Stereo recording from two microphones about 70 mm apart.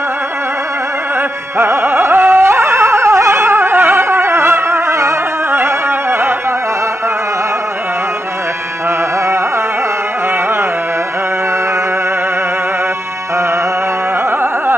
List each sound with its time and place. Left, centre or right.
1.6 s carnatic music: right